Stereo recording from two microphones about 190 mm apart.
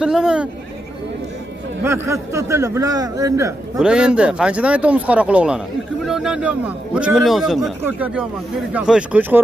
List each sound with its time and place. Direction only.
0.0 s a man's voice: 5° right (ahead or behind)
1.9 s a man's voice: 15° right (ahead or behind)
3.7 s a man's voice: 5° right (ahead or behind)